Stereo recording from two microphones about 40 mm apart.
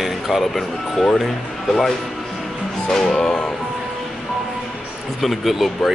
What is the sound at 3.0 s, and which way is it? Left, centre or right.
Music, left.